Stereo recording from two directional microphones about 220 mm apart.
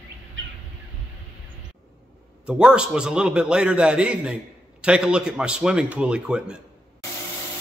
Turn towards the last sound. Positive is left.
turn(degrees=-5)  # may be behind; listen again after turning